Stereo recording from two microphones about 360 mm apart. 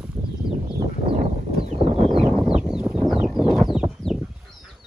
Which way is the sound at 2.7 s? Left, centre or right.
Centre.